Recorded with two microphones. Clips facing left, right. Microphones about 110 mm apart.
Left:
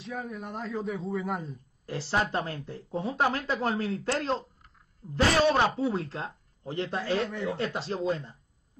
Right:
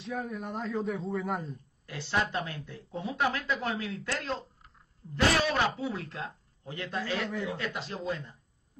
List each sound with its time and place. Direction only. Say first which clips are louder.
0.0 s a man's voice: right 1 dB; centre (ahead or behind)
1.9 s speech: left 2 dB; 30° left (ahead or behind)
7.2 s a man's voice: left 2 dB; centre (ahead or behind)
7.5 s speech: left 5 dB; 30° left (ahead or behind)